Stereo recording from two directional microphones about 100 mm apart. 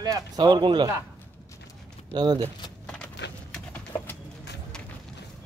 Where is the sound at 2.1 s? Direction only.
45° right (ahead or behind).